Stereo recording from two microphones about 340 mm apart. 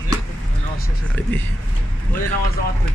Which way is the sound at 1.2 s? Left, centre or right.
Centre.